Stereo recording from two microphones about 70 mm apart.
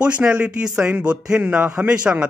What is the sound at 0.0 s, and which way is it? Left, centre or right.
A man's voice, centre.